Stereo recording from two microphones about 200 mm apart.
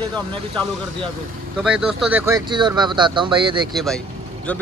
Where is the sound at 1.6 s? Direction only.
5° right (ahead or behind); by 3.7 s 25° right (ahead or behind).